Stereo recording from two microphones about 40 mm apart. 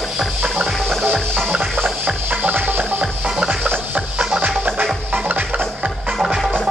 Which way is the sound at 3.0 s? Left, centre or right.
Right.